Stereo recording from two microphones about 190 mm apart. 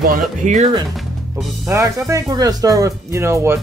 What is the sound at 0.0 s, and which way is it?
Speech, 45° right (ahead or behind).